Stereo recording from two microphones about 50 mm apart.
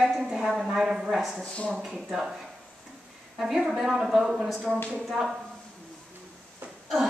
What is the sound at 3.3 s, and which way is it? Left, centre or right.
A woman's voice, centre.